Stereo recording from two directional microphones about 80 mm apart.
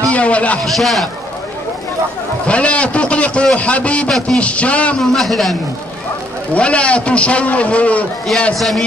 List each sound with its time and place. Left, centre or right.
0.1 s a man's voice: centre
0.7 s a man's voice: centre
2.4 s a man's voice: centre
5.0 s a man's voice: centre
6.5 s a man's voice: centre
8.5 s a man's voice: centre